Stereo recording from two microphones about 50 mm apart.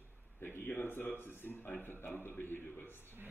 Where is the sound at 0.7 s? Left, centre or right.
Left.